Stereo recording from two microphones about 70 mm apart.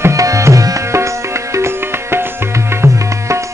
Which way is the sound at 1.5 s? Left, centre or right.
Right.